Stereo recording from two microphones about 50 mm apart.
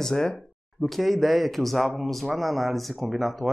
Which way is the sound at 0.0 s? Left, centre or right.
Centre.